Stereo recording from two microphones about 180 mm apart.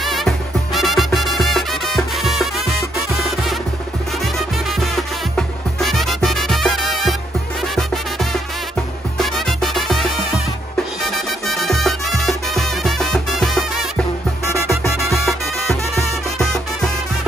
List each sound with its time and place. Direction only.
0.0 s music: centre (ahead or behind)
15.1 s music: centre (ahead or behind)